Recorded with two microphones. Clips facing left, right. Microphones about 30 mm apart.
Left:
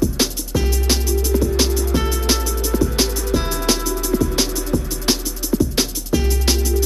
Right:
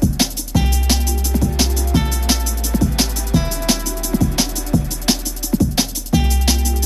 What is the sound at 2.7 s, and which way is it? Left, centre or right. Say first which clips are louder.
Music: even; centre.